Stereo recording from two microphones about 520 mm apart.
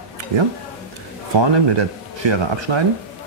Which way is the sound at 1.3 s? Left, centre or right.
Right.